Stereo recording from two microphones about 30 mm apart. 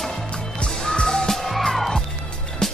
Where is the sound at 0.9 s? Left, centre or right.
Left.